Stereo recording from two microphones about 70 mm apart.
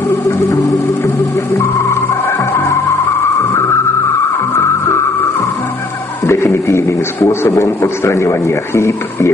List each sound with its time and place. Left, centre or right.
0.3 s organ: left
1.6 s music: left
4.6 s music: left
6.2 s a sound: left
7.4 s a man's voice: left